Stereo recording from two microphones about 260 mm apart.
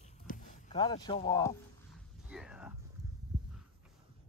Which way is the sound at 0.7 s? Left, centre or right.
Centre.